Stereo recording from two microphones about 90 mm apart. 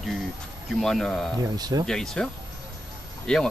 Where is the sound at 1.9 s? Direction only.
5° left (ahead or behind).